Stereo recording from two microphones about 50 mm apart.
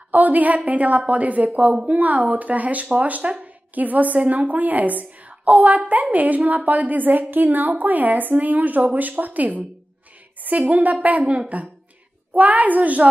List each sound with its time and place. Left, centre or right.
0.1 s speech: right